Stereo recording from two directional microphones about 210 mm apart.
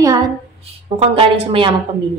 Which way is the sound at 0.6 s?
25° right (ahead or behind).